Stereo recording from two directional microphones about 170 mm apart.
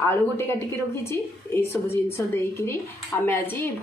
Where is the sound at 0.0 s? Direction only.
15° left (ahead or behind).